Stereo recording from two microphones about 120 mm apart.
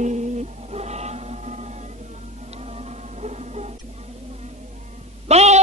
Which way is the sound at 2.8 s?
65° right (ahead or behind).